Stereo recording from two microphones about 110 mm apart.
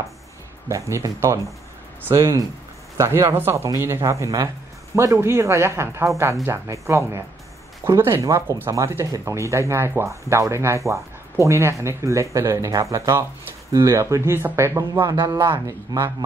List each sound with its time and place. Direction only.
0.7 s speech: 30° right (ahead or behind)
15.0 s speech: 40° right (ahead or behind)
15.5 s speech: 25° right (ahead or behind)